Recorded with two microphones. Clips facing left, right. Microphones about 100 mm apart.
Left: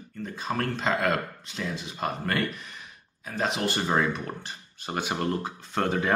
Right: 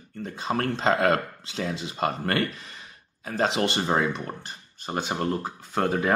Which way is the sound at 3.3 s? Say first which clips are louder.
Right 4 dB; 35° right (ahead or behind).